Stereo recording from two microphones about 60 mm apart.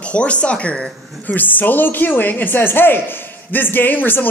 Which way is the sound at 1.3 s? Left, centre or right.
Left.